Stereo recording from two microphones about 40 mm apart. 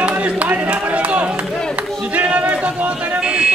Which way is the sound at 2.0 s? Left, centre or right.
Right.